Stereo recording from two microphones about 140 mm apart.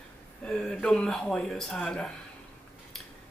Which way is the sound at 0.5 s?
5° left (ahead or behind).